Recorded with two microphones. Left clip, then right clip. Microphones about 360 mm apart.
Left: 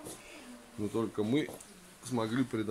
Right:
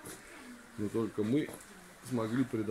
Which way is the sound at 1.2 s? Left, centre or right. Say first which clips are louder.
Left 1 dB; centre.